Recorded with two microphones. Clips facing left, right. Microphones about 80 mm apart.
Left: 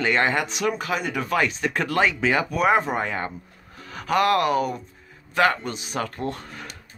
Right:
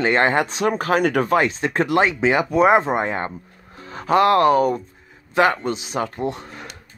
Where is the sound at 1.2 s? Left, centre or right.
Right.